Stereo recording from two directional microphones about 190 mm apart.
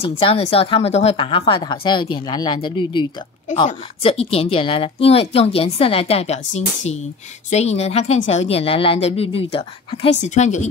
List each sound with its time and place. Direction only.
0.0 s a woman's voice: 30° left (ahead or behind)